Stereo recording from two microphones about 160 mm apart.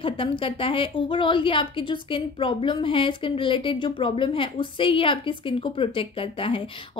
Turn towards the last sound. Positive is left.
turn(degrees=35)  # may be behind; listen again after turning